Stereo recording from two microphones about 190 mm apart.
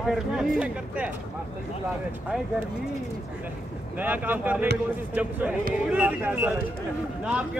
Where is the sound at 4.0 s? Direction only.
10° right (ahead or behind).